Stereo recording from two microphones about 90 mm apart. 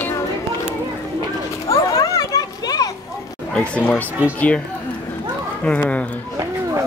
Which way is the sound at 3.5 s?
15° left (ahead or behind).